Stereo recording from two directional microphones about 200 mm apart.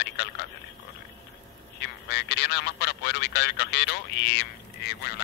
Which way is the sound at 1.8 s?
55° left (ahead or behind).